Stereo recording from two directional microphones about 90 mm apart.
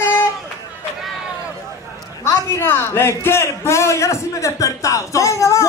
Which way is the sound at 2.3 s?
30° left (ahead or behind).